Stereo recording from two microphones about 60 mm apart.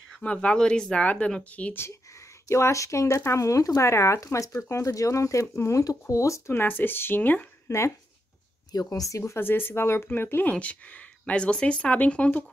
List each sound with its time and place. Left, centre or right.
0.2 s speech: left
2.4 s speech: left
4.2 s speech: left
6.5 s speech: left
7.6 s speech: left
8.7 s speech: left
9.2 s speech: left